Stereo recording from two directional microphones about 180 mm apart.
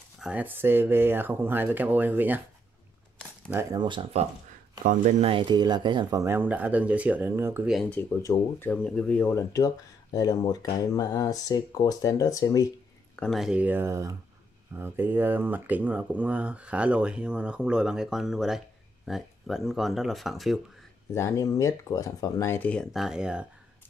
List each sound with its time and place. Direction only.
0.2 s speech: 5° right (ahead or behind)
3.4 s speech: 15° right (ahead or behind)
3.8 s speech: 25° right (ahead or behind); by 7.7 s 10° right (ahead or behind)
7.7 s speech: 5° left (ahead or behind)
8.2 s speech: 15° left (ahead or behind)
13.1 s speech: 5° left (ahead or behind)
21.1 s speech: 15° left (ahead or behind); by 23.4 s 5° right (ahead or behind)